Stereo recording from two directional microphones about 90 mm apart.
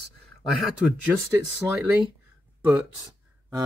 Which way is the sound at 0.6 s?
Centre (ahead or behind).